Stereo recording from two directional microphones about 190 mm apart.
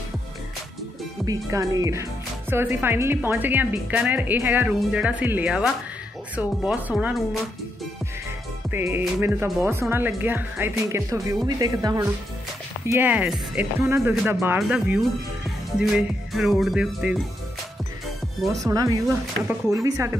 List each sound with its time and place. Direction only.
1.2 s speech: 20° right (ahead or behind)
8.6 s speech: 10° right (ahead or behind)
14.6 s music: 5° right (ahead or behind)
18.4 s music: centre (ahead or behind)
18.7 s speech: 20° right (ahead or behind)